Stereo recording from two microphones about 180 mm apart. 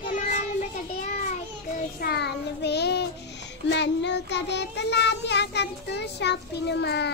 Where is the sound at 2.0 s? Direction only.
65° left (ahead or behind).